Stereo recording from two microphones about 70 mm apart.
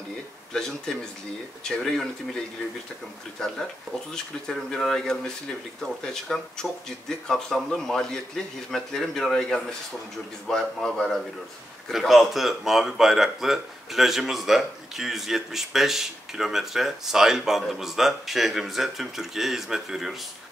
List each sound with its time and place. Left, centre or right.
0.5 s speech: centre
3.3 s speech: centre
6.2 s speech: centre